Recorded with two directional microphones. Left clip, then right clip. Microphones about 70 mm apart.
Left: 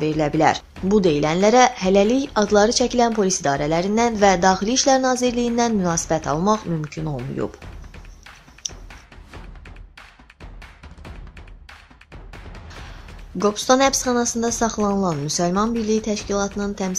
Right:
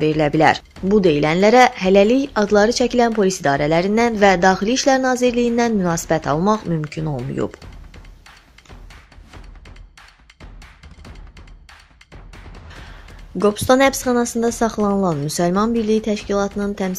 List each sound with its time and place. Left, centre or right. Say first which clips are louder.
0.0 s speech: right 3 dB; right
0.8 s speech: right 3 dB; centre
1.1 s speech: right 3 dB; right
13.4 s speech: right 3 dB; right
15.0 s speech: right 2 dB; right